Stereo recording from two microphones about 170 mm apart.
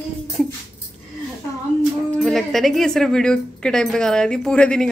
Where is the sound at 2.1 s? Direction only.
Centre (ahead or behind).